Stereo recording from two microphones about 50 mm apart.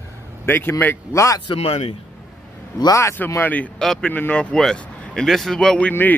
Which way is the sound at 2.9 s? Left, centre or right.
Left.